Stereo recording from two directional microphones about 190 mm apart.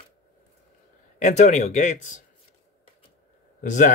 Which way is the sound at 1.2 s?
40° left (ahead or behind).